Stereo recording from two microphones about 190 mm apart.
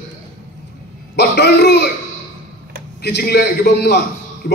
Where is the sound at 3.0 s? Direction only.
60° left (ahead or behind).